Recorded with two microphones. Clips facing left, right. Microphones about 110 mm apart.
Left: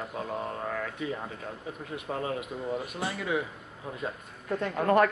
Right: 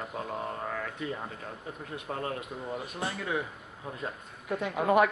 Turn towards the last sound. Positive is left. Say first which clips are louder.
# left 1 dB
turn(degrees=-10)  # may be behind; listen again after turning